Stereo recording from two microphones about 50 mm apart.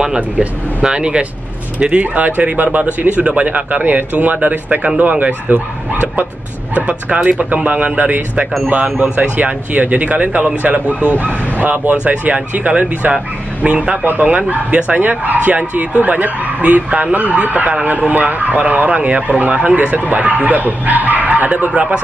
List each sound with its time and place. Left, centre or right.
0.0 s speech: centre; by 21.6 s right